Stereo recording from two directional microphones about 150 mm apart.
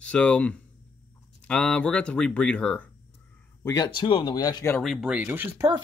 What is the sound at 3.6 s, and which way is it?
Speech, 25° left (ahead or behind).